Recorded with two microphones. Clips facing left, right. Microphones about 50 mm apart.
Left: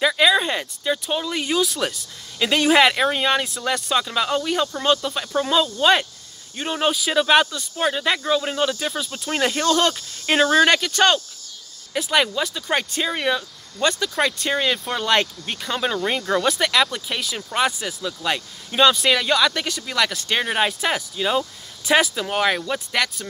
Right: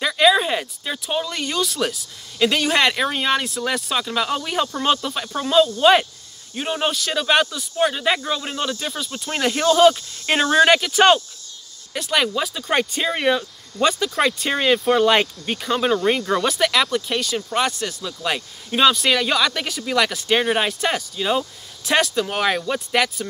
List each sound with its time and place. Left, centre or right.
0.0 s speech: centre
11.9 s speech: centre